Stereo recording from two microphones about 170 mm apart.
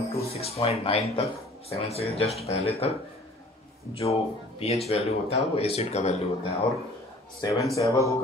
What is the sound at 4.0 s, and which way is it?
Speech, 35° left (ahead or behind).